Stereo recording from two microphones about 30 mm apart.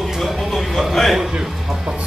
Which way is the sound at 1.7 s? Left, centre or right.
Centre.